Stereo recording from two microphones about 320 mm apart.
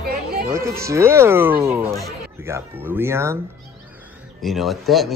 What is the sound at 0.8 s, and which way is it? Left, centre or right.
Speech, centre.